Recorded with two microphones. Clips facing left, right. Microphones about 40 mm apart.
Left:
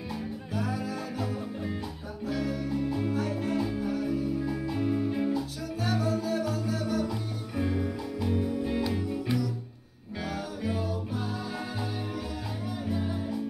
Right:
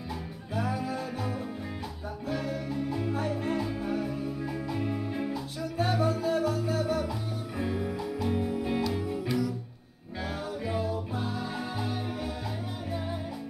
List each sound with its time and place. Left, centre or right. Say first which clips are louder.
0.6 s music: right 2 dB; right
4.7 s music: left 5 dB; centre
5.8 s music: right 2 dB; right
7.5 s music: left 3 dB; centre
8.3 s music: left 2 dB; centre